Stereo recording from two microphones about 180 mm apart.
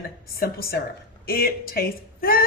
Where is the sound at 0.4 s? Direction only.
55° left (ahead or behind).